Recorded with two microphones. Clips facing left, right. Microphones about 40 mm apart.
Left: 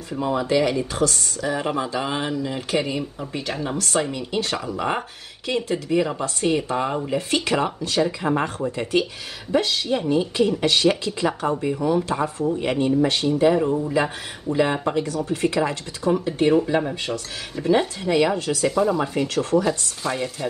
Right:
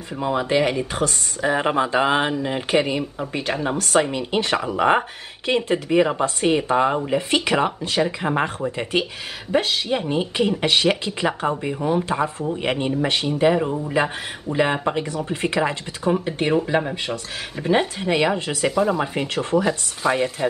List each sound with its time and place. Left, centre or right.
0.1 s speech: centre
0.4 s speech: right
18.7 s speech: centre
19.1 s speech: right